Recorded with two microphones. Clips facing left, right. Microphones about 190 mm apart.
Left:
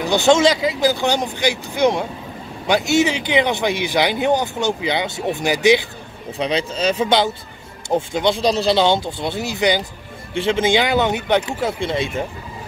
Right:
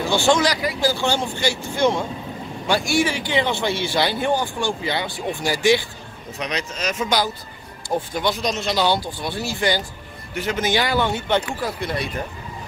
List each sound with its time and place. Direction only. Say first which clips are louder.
0.0 s a man's voice: left 4 dB; 20° left (ahead or behind)
6.3 s a man's voice: left 7 dB; 30° left (ahead or behind)